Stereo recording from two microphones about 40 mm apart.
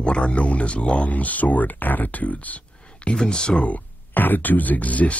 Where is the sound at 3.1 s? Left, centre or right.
Centre.